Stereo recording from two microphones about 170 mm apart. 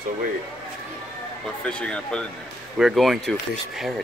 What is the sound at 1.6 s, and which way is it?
Speech, 5° left (ahead or behind).